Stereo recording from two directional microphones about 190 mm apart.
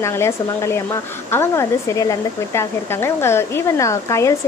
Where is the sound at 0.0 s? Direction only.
15° left (ahead or behind).